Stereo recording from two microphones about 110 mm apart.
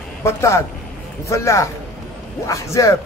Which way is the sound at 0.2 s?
25° left (ahead or behind).